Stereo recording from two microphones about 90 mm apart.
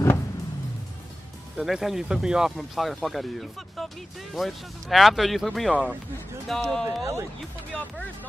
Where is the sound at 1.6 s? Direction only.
5° right (ahead or behind).